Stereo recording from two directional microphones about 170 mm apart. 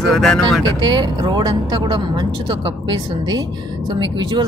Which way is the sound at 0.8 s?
25° right (ahead or behind).